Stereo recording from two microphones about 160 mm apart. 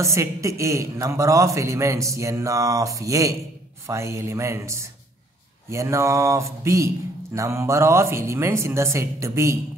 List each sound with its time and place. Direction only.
0.0 s a man's voice: 20° right (ahead or behind)